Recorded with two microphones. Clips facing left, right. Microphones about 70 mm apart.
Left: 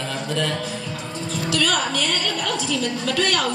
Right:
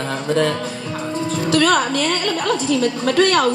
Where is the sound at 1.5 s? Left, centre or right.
Right.